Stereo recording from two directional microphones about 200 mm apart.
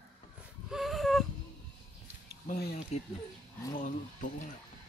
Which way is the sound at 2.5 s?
50° left (ahead or behind).